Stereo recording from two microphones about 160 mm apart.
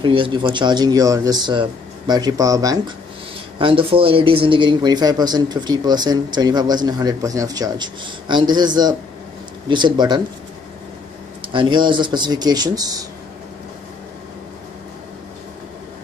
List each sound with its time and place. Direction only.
0.0 s a man's voice: 30° right (ahead or behind)
3.5 s a man's voice: 35° right (ahead or behind)
11.5 s a man's voice: 30° right (ahead or behind)